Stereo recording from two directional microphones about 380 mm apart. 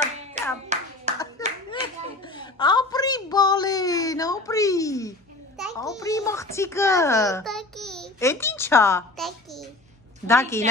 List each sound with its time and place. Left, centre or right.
0.4 s hands: centre
1.1 s clapping: centre
2.2 s a sound: centre
10.2 s a woman's voice: centre